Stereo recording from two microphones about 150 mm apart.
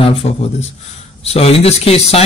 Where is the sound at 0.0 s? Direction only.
40° left (ahead or behind).